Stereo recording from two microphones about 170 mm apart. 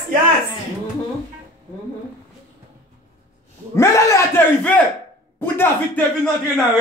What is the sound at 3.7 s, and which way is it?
Speech, 15° left (ahead or behind).